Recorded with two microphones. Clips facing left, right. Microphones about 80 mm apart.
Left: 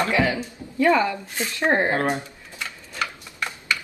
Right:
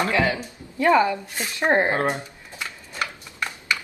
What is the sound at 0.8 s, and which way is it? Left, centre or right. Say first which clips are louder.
Speech: right 1 dB; right.